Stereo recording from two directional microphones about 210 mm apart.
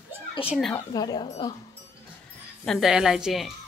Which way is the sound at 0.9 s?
20° left (ahead or behind).